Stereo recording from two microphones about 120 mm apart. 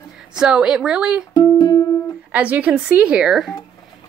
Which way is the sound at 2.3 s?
10° right (ahead or behind).